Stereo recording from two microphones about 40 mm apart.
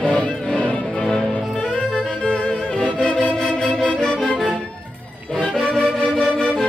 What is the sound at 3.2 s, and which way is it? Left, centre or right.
Organ, centre.